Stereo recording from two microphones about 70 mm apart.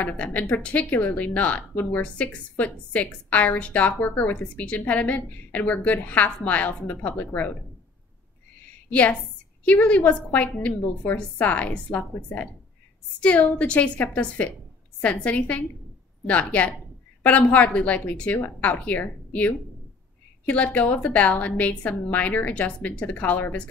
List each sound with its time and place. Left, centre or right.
0.0 s speech: left
9.7 s speech: centre